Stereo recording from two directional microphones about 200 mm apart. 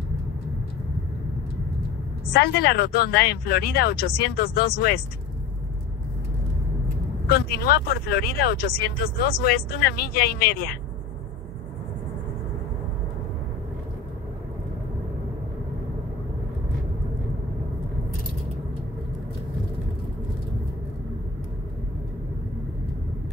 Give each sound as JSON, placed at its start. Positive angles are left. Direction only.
{"t": 2.6, "sound": "speech", "side_deg": 50}
{"t": 7.2, "sound": "speech", "side_deg": 50}